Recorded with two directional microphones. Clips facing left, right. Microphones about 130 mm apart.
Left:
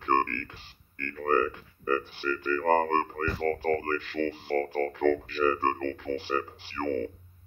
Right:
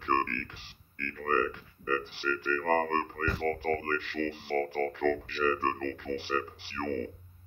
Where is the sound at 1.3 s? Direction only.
50° left (ahead or behind).